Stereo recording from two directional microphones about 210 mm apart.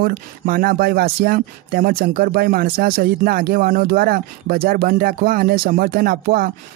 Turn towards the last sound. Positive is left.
turn(degrees=-45)  # may be behind; listen again after turning